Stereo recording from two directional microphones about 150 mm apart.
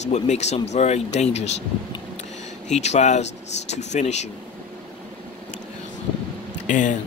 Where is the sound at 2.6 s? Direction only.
50° left (ahead or behind).